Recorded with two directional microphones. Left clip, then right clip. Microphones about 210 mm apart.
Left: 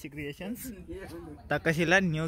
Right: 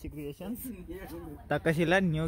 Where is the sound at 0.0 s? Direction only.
Centre (ahead or behind).